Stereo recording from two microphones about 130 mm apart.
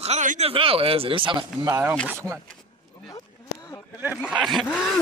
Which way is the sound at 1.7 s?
15° right (ahead or behind).